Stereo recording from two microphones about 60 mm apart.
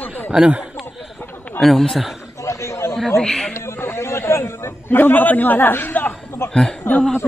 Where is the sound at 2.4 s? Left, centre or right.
Left.